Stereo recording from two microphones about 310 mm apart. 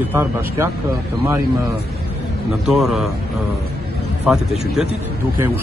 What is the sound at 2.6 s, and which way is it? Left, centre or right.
Speech, centre.